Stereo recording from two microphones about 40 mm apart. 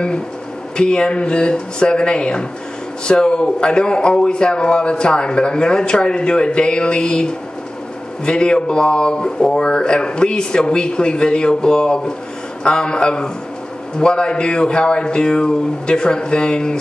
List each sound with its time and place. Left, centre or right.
0.7 s speech: left